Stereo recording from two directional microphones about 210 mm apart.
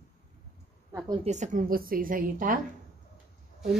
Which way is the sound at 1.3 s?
35° right (ahead or behind).